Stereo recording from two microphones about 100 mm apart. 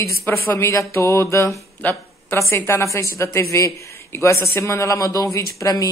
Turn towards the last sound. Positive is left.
turn(degrees=35)  # may be behind; listen again after turning